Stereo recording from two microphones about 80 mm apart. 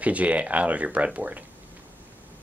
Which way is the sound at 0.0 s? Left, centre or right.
Centre.